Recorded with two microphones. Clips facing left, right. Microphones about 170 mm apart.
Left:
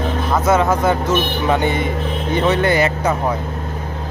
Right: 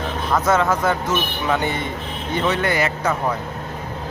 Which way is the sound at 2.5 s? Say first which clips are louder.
Left 5 dB; 30° left (ahead or behind).